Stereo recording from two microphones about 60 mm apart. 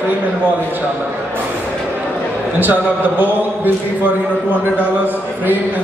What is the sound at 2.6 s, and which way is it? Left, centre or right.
A man's voice, right.